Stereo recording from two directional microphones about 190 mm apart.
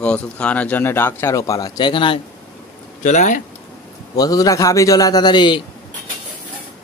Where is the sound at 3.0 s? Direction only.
40° left (ahead or behind).